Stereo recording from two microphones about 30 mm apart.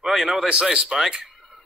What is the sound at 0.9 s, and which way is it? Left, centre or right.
Speech, right.